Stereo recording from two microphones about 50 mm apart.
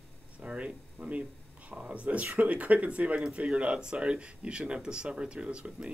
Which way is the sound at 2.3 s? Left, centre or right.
Right.